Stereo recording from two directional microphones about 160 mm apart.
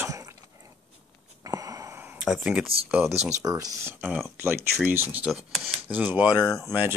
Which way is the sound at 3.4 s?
20° right (ahead or behind).